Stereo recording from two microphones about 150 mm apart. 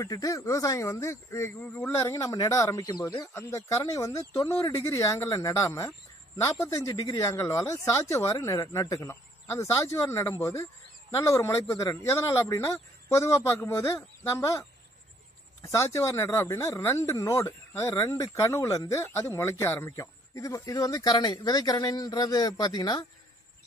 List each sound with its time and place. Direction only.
0.0 s speech: 20° left (ahead or behind)